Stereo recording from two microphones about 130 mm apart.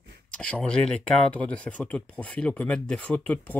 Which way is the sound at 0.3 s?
10° left (ahead or behind).